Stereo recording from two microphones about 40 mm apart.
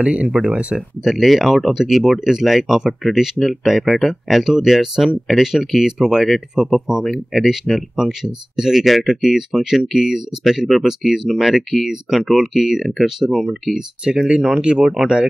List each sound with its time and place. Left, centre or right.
0.0 s speech: right
1.0 s speech: centre
7.1 s speech: centre
8.8 s speech: centre
13.7 s speech: centre